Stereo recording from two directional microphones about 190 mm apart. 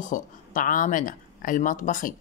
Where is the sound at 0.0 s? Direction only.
45° left (ahead or behind).